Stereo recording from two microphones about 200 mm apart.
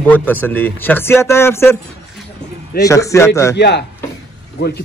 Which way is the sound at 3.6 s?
55° left (ahead or behind).